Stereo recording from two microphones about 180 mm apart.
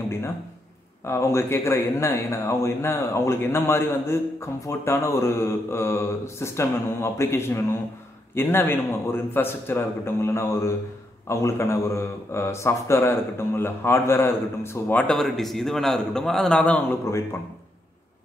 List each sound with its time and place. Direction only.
1.0 s speech: 15° left (ahead or behind)